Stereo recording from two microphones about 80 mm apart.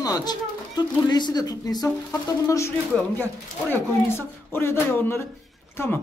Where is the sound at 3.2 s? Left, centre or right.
Left.